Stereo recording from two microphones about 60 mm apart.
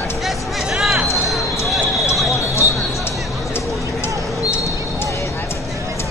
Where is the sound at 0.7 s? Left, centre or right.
Centre.